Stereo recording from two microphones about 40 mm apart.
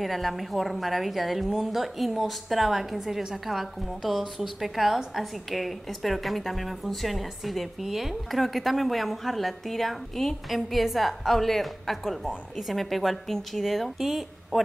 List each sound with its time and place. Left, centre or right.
0.0 s a woman's voice: centre
14.5 s speech: left